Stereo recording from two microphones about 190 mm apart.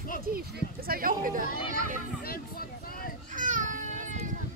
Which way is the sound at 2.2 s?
50° left (ahead or behind).